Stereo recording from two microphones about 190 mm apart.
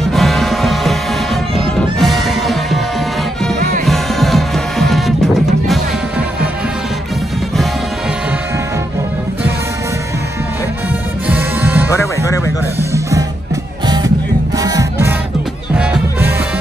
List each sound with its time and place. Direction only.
0.1 s music: centre (ahead or behind)
3.8 s music: centre (ahead or behind)
11.2 s music: 10° right (ahead or behind)